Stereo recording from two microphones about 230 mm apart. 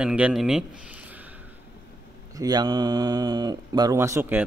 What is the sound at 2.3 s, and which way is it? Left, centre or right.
A man's voice, centre.